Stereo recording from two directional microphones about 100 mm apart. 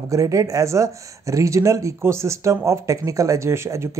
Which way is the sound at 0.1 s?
35° right (ahead or behind).